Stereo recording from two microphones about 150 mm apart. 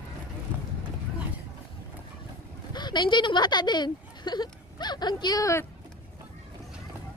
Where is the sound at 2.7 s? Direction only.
30° left (ahead or behind).